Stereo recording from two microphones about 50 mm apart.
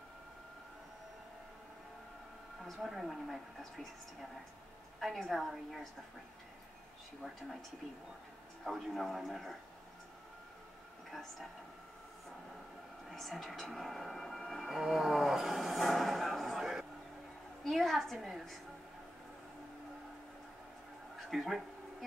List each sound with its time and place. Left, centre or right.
2.6 s speech: centre
5.0 s speech: centre
8.6 s speech: centre
11.1 s speech: centre
13.1 s speech: centre
21.3 s speech: centre